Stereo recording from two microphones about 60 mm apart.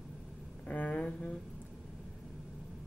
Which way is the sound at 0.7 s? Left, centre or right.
Left.